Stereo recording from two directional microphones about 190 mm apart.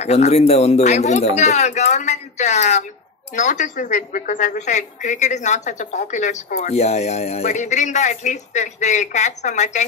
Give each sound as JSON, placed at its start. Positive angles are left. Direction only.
{"t": 0.0, "sound": "a woman's voice", "side_deg": 35}